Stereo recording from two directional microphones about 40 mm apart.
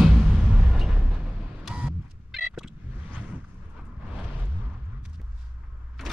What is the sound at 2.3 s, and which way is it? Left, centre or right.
Vehicle, centre.